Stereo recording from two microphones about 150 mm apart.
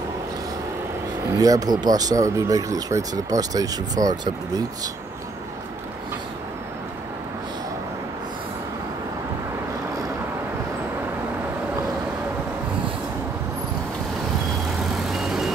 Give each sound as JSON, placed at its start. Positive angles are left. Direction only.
{"t": 1.3, "sound": "speech", "side_deg": -25}
{"t": 15.0, "sound": "vehicle", "side_deg": 0}